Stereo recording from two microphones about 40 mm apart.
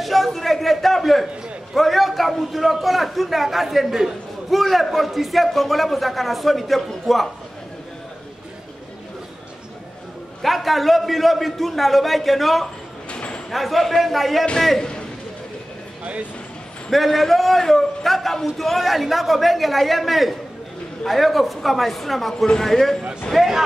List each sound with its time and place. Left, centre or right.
0.0 s a man's voice: centre
10.4 s a man's voice: centre
13.1 s a sound: left
13.5 s a man's voice: centre
14.8 s a sound: left
16.9 s a man's voice: centre
23.3 s a man's voice: centre